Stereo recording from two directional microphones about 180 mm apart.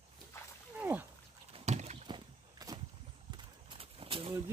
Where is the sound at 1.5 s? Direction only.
40° right (ahead or behind); by 2.8 s 25° right (ahead or behind).